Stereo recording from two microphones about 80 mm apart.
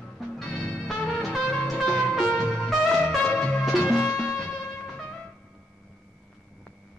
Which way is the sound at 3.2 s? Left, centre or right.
Centre.